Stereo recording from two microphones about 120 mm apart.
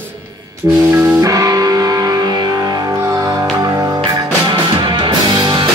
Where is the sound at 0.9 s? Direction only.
15° right (ahead or behind).